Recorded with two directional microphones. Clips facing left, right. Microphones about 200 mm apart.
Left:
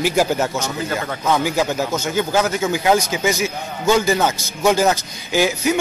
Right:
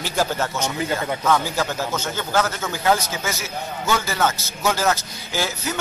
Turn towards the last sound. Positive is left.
turn(degrees=15)  # may be behind; listen again after turning